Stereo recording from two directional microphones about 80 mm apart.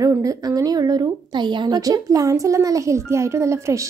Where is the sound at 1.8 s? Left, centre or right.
Right.